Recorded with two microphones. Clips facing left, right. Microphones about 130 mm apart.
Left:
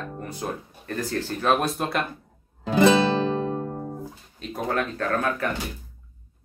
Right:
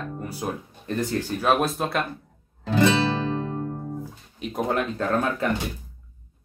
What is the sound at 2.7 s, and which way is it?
Music, 15° left (ahead or behind).